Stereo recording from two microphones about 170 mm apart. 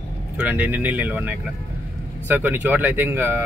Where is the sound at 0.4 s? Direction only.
10° right (ahead or behind).